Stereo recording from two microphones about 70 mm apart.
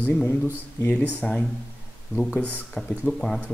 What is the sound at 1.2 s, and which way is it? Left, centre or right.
Speech, centre.